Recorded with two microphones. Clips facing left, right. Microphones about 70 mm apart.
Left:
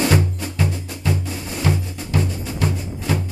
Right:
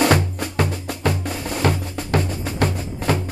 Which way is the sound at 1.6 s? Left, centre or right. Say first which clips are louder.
Right 1 dB; right.